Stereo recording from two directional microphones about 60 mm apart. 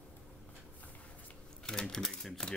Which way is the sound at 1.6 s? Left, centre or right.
Centre.